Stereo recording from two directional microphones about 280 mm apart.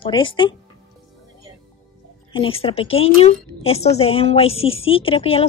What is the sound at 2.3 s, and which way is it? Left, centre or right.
A woman's voice, centre.